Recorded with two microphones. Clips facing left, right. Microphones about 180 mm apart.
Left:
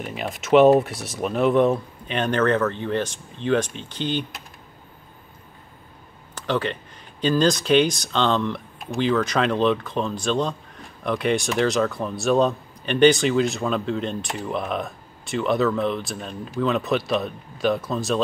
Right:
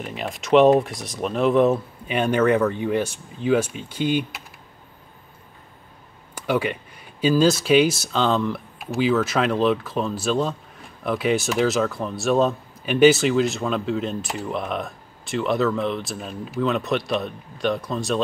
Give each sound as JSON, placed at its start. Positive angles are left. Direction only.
{"t": 0.0, "sound": "speech", "side_deg": 0}
{"t": 6.3, "sound": "a man's voice", "side_deg": -10}